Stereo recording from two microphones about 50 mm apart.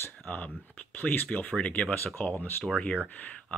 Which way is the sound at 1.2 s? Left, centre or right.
Left.